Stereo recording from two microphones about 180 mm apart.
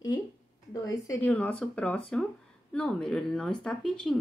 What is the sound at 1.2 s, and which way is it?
Speech, 10° left (ahead or behind).